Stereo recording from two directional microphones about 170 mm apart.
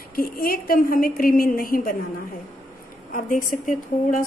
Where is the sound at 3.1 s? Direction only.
50° left (ahead or behind).